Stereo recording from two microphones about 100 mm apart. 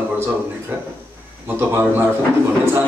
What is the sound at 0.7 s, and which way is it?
A man's voice, 20° right (ahead or behind).